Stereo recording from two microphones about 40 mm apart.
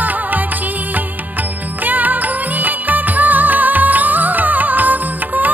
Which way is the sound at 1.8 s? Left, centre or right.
Right.